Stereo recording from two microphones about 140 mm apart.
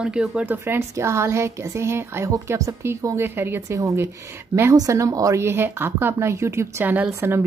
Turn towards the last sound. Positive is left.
turn(degrees=-15)  # may be behind; listen again after turning